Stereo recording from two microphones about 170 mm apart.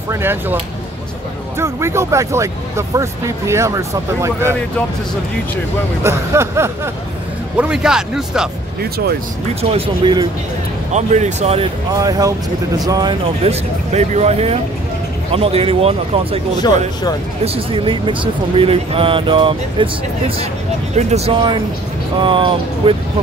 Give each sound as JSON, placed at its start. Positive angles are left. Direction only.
{"t": 0.1, "sound": "speech", "side_deg": -15}
{"t": 1.6, "sound": "speech", "side_deg": -15}
{"t": 6.0, "sound": "speech", "side_deg": -15}
{"t": 9.6, "sound": "speech", "side_deg": -35}
{"t": 10.9, "sound": "speech", "side_deg": -45}
{"t": 11.9, "sound": "speech", "side_deg": -20}
{"t": 13.4, "sound": "speech", "side_deg": -40}
{"t": 16.6, "sound": "speech", "side_deg": 25}
{"t": 17.6, "sound": "speech", "side_deg": -30}